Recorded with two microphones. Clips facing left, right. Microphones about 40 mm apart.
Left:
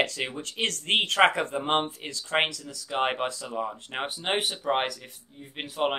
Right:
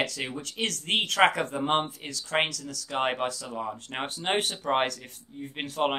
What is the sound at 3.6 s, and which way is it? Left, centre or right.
Speech, centre.